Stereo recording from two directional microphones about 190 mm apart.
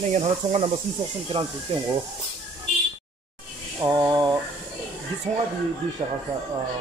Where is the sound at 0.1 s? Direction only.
35° right (ahead or behind).